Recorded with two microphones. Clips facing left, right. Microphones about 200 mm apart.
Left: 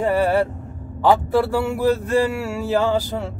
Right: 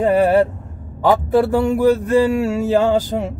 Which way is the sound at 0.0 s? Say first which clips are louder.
Right 4 dB; 20° right (ahead or behind).